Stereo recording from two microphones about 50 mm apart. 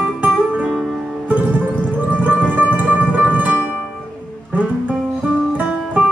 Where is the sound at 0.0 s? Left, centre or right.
Right.